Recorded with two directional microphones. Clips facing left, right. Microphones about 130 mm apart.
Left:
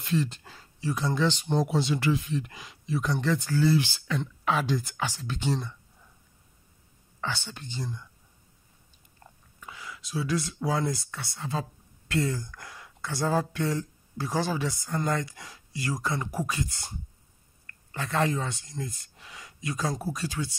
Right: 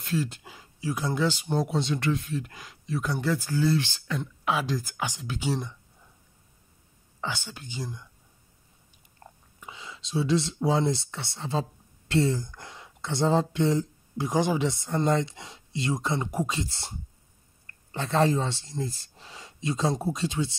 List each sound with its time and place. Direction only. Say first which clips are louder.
0.0 s speech: left 1 dB; 5° right (ahead or behind)
4.2 s speech: even; 5° right (ahead or behind)
4.9 s speech: even; 15° right (ahead or behind)
7.2 s speech: even; 15° right (ahead or behind)
9.6 s speech: even; 20° right (ahead or behind)